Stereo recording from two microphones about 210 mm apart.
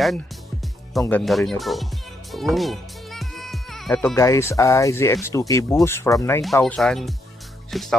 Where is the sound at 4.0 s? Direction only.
15° left (ahead or behind).